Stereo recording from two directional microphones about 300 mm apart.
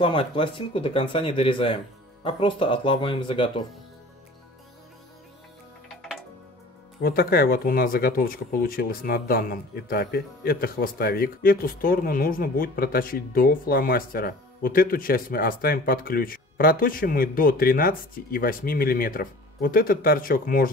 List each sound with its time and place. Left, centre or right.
0.0 s speech: centre
5.9 s music: centre
7.0 s speech: left